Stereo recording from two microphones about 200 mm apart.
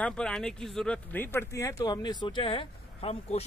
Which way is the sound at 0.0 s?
5° left (ahead or behind).